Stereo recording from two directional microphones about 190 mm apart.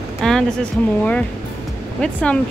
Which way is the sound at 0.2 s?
Centre (ahead or behind).